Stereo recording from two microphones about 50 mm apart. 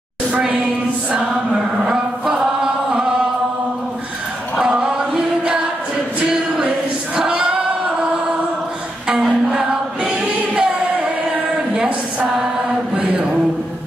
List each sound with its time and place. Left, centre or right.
1.1 s music: centre
2.3 s chant: centre
4.6 s music: centre
7.2 s choir: centre
9.0 s music: centre
10.0 s choir: centre
12.9 s mantra: right